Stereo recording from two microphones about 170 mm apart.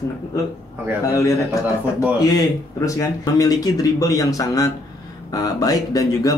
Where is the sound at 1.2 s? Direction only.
20° left (ahead or behind).